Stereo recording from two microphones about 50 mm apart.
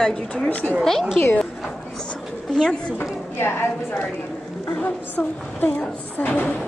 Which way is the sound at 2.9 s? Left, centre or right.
Left.